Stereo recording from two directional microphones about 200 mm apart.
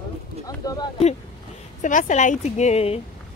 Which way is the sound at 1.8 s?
40° left (ahead or behind).